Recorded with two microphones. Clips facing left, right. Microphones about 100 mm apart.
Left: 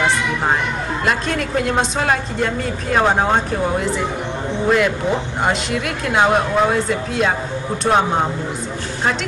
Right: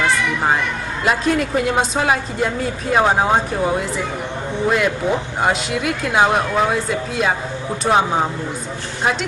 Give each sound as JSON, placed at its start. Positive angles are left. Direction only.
{"t": 1.0, "sound": "a woman's voice", "side_deg": -5}